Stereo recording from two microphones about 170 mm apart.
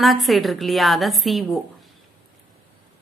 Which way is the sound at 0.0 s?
Centre (ahead or behind).